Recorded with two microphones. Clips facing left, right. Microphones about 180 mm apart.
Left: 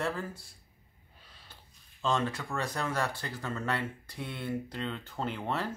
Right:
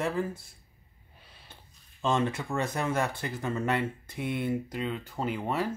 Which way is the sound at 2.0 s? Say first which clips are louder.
Right 3 dB; 20° right (ahead or behind).